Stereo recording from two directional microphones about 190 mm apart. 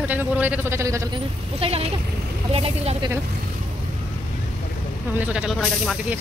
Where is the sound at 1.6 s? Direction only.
30° right (ahead or behind).